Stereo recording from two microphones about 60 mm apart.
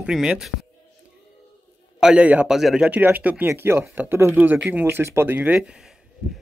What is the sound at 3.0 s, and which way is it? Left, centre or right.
Speech, right.